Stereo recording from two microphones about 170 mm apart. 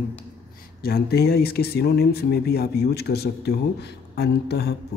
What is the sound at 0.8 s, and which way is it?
Speech, 65° left (ahead or behind).